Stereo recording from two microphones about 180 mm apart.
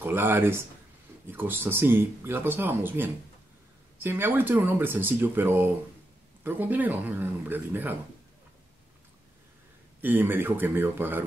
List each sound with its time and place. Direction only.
0.0 s speech: 10° right (ahead or behind)
10.0 s speech: 10° right (ahead or behind)